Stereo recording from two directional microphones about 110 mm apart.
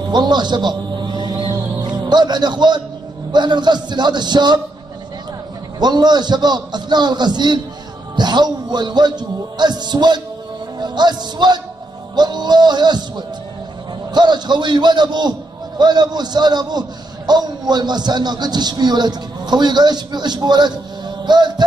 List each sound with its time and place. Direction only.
0.1 s music: 40° right (ahead or behind)
3.3 s a man's voice: 40° right (ahead or behind)
5.8 s a man's voice: 40° right (ahead or behind)
21.3 s music: 40° right (ahead or behind)